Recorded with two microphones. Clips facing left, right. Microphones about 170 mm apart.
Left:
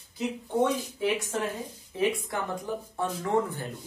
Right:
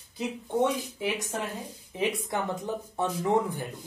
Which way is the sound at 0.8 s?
20° right (ahead or behind).